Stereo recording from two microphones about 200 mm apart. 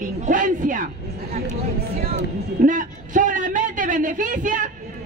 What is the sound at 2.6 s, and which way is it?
A man's voice, 40° right (ahead or behind).